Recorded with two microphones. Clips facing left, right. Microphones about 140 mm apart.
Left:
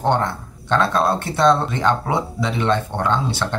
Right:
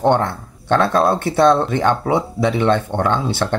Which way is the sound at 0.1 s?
55° right (ahead or behind).